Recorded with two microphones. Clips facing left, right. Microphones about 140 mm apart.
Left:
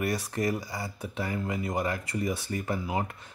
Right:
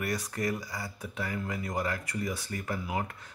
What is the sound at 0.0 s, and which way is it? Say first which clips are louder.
Speech: left 3 dB; 25° left (ahead or behind).